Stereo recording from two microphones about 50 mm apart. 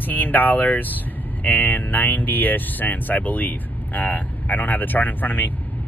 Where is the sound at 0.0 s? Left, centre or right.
Left.